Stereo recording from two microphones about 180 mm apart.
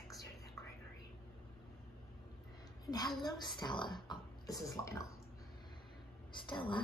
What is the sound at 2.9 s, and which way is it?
A woman's voice, 20° left (ahead or behind).